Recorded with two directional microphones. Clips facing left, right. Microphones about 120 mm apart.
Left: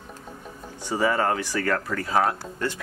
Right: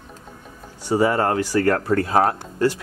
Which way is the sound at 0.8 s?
10° right (ahead or behind).